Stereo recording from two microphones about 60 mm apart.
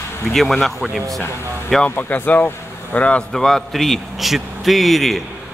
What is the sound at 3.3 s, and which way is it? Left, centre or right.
A man's voice, centre.